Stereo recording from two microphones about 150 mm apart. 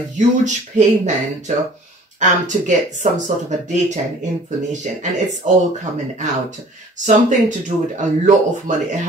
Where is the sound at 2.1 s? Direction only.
55° right (ahead or behind).